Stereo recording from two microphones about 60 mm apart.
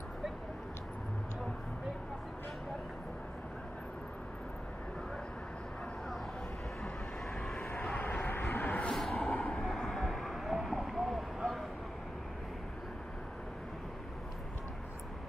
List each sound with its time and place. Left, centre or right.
7.3 s vehicle: centre
8.2 s vehicle: left
8.5 s a sound: left
8.9 s vehicle: centre